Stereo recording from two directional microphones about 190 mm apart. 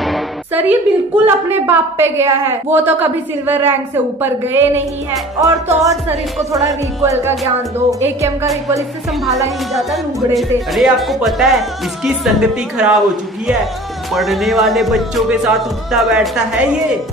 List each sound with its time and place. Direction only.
0.0 s a sound: centre (ahead or behind)
0.6 s a woman's voice: 10° right (ahead or behind)
8.0 s a woman's voice: 10° right (ahead or behind)
9.8 s speech: centre (ahead or behind)
14.1 s speech: centre (ahead or behind)